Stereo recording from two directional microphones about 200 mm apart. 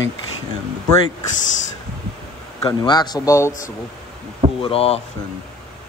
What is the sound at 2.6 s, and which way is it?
Speech, 20° left (ahead or behind).